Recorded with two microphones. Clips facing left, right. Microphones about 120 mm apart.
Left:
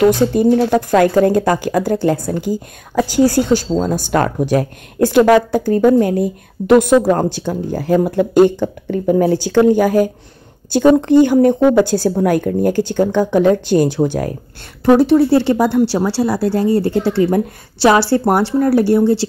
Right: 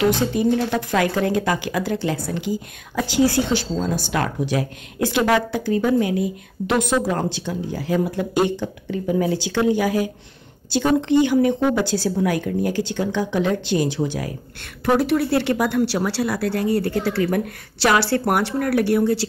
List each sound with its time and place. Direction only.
0.0 s a woman's voice: 50° left (ahead or behind)
15.0 s speech: 30° left (ahead or behind)